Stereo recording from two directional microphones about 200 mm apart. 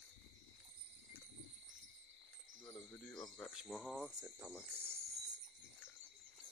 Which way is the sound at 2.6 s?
10° left (ahead or behind).